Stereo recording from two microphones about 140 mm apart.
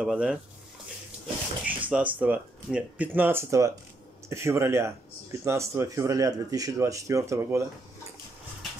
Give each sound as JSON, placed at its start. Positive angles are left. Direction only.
{"t": 0.0, "sound": "speech", "side_deg": -5}
{"t": 1.7, "sound": "speech", "side_deg": -10}